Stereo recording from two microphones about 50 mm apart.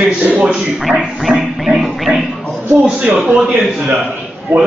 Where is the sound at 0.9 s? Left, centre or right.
Right.